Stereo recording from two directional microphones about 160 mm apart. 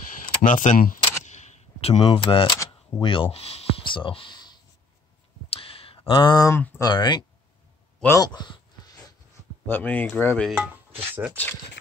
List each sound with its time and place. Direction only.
0.2 s camera: 55° left (ahead or behind); by 4.6 s 25° left (ahead or behind)
5.5 s a sound: 35° left (ahead or behind)
6.8 s speech: 25° left (ahead or behind)
8.2 s a sound: 25° left (ahead or behind)
9.7 s speech: 10° left (ahead or behind)
10.6 s chopping: 10° right (ahead or behind)